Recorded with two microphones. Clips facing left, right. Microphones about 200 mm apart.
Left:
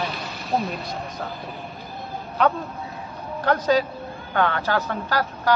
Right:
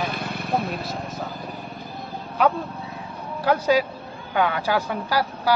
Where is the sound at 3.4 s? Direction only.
10° right (ahead or behind).